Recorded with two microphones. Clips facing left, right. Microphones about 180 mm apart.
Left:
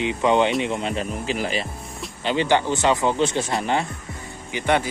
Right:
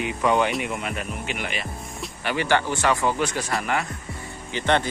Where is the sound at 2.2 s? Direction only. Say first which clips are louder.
Left 3 dB; 20° left (ahead or behind).